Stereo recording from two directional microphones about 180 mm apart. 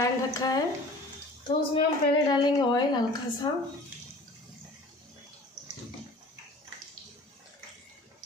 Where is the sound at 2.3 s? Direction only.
25° left (ahead or behind).